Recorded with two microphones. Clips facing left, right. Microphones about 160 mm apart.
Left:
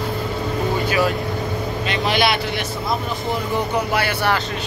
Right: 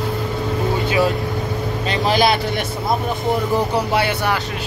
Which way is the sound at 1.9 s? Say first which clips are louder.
Right 3 dB; 35° right (ahead or behind).